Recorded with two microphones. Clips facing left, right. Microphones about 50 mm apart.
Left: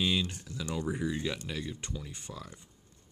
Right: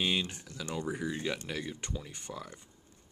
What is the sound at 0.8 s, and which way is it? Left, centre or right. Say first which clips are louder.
Speech: left 2 dB; centre.